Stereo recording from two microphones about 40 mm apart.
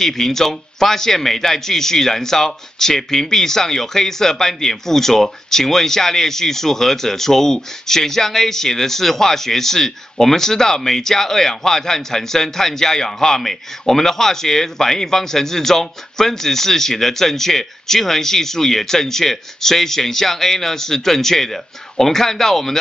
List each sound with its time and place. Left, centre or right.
0.0 s a man's voice: centre